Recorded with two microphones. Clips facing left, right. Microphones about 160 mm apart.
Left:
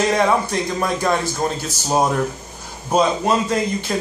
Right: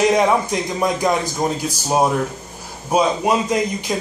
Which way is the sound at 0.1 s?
15° right (ahead or behind).